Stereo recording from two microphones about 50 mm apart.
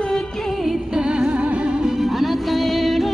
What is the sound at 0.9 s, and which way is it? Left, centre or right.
Music, centre.